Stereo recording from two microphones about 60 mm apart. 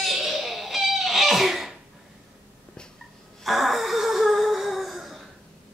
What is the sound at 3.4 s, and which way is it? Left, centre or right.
Wail, centre.